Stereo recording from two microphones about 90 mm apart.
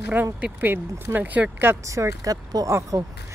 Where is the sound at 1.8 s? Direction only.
35° right (ahead or behind).